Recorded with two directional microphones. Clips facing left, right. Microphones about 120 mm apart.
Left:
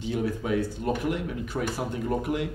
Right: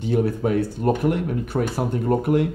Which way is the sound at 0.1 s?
50° right (ahead or behind).